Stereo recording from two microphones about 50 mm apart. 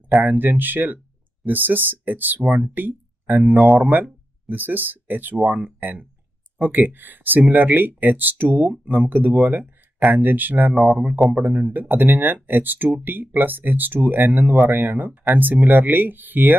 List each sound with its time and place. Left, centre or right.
0.2 s speech: right